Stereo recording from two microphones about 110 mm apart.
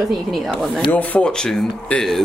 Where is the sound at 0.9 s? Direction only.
15° left (ahead or behind).